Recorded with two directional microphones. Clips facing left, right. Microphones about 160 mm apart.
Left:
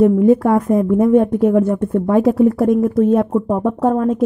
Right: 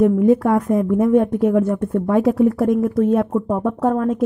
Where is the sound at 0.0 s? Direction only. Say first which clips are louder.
Left 3 dB; 30° left (ahead or behind).